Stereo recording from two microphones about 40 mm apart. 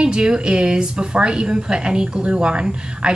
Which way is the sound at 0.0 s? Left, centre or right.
Right.